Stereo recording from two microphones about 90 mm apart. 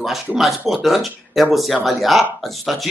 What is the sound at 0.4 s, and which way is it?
Speech, centre (ahead or behind).